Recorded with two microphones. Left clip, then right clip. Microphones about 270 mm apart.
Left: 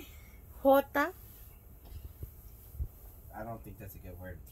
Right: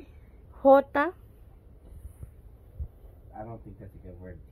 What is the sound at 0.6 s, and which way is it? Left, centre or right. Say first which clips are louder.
Speech: right 6 dB; right.